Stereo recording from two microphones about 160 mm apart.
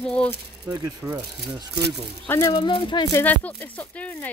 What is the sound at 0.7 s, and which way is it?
Speech, 20° right (ahead or behind).